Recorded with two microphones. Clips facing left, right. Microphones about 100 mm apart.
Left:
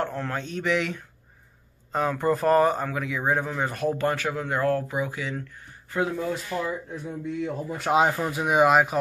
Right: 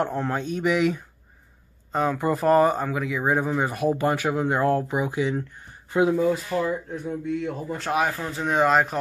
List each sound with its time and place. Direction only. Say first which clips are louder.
0.0 s speech: right 4 dB; 15° right (ahead or behind)
6.2 s speech: right 5 dB; 5° right (ahead or behind)
7.9 s speech: left 4 dB; 20° left (ahead or behind)